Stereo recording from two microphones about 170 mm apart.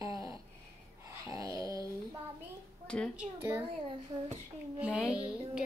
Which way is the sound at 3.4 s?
15° right (ahead or behind).